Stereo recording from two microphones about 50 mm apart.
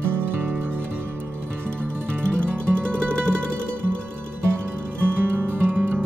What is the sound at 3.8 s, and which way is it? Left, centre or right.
Music, right.